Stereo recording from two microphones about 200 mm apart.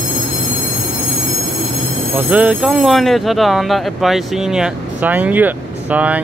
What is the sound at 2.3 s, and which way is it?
Speech, 5° right (ahead or behind).